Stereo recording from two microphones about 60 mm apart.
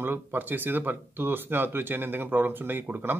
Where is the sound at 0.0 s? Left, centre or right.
Right.